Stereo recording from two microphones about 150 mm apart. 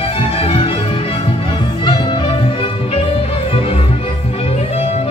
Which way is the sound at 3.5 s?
40° left (ahead or behind).